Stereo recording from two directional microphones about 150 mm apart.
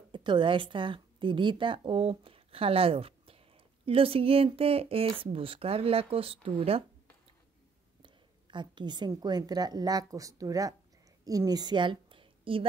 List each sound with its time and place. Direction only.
0.1 s a woman's voice: 30° right (ahead or behind)
8.0 s a woman's voice: 30° right (ahead or behind)